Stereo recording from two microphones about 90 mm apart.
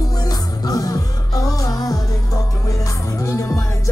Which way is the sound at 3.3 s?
35° left (ahead or behind).